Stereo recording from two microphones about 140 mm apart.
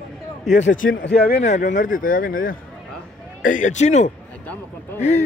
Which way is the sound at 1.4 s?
60° left (ahead or behind).